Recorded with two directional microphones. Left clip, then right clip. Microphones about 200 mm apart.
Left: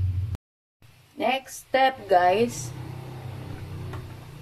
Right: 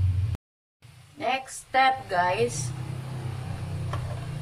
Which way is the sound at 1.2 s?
30° left (ahead or behind).